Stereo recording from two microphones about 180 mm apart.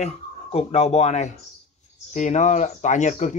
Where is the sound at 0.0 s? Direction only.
35° left (ahead or behind).